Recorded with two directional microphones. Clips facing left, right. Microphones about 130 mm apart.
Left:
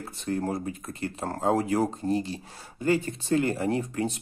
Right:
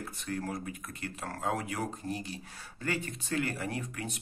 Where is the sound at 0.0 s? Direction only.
30° left (ahead or behind).